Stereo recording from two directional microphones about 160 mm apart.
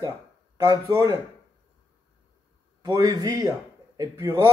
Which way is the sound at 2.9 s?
25° right (ahead or behind).